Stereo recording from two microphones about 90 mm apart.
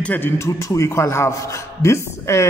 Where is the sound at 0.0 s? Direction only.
20° left (ahead or behind).